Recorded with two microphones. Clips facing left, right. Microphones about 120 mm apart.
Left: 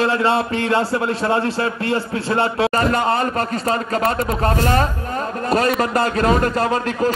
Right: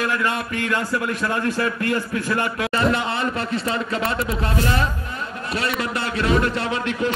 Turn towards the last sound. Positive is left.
turn(degrees=40)  # may be behind; listen again after turning